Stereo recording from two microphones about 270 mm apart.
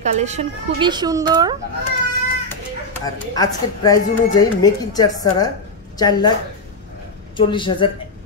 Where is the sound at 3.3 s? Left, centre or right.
Centre.